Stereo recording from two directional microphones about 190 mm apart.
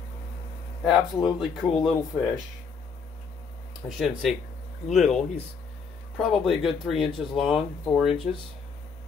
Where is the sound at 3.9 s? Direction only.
Centre (ahead or behind).